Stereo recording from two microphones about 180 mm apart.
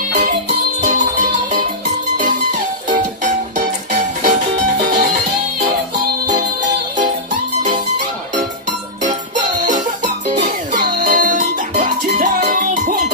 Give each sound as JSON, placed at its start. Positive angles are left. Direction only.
{"t": 0.7, "sound": "music", "side_deg": -45}
{"t": 9.8, "sound": "music", "side_deg": -45}